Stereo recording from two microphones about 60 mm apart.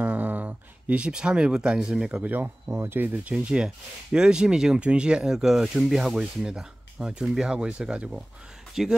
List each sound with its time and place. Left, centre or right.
0.0 s a sound: right; by 2.2 s centre
2.2 s speech: right
2.7 s speech: right; by 8.9 s centre